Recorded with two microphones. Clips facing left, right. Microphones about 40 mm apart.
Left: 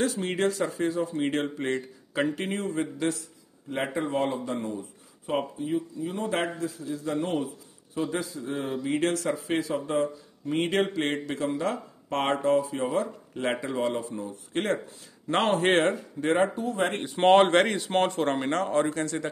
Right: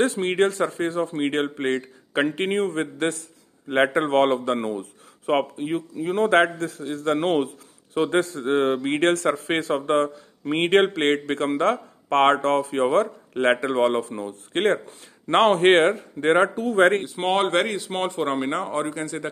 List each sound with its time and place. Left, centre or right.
0.0 s a man's voice: right
3.6 s a man's voice: right
17.0 s speech: centre